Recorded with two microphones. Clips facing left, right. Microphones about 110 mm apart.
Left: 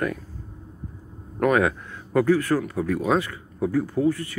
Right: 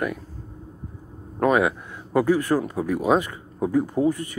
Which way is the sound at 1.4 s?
20° right (ahead or behind).